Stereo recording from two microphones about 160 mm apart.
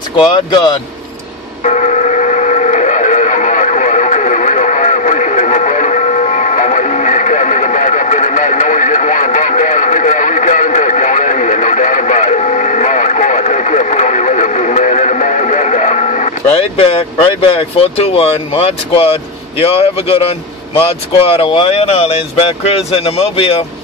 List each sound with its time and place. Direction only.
0.2 s speech: 25° left (ahead or behind)
1.7 s a sound: 50° left (ahead or behind)
19.6 s speech: 35° left (ahead or behind)